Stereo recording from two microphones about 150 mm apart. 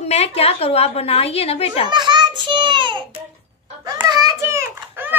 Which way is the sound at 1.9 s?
30° right (ahead or behind).